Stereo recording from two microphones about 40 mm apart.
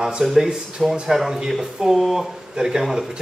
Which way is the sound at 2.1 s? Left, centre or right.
Centre.